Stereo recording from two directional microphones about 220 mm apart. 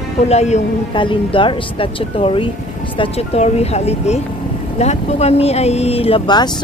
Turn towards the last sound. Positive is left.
turn(degrees=20)  # may be behind; listen again after turning